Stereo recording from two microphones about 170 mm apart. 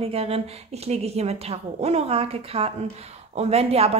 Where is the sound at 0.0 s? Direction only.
35° right (ahead or behind).